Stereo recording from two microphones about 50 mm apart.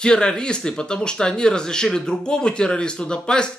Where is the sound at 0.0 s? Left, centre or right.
Centre.